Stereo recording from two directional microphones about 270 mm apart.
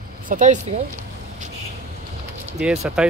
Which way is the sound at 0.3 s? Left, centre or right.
Right.